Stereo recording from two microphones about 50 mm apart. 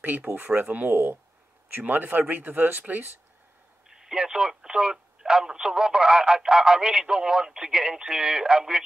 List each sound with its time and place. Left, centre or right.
0.0 s speech: right
3.9 s speech: centre